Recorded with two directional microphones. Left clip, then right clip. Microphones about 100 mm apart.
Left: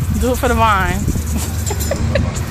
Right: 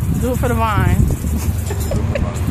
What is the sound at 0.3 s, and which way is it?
Speech, 10° left (ahead or behind).